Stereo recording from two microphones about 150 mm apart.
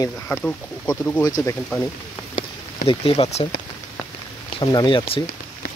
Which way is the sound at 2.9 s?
40° left (ahead or behind).